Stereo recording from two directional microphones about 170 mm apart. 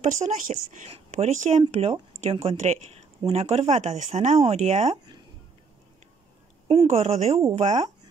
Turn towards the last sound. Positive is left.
turn(degrees=-40)  # may be behind; listen again after turning